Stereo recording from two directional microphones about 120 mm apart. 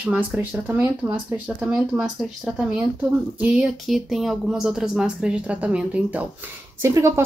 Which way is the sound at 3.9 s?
Centre (ahead or behind).